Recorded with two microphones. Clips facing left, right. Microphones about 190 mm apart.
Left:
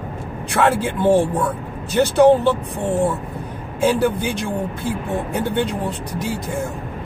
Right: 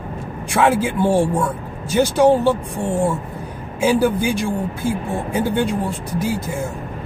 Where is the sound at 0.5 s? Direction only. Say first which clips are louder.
Right 1 dB; 10° right (ahead or behind).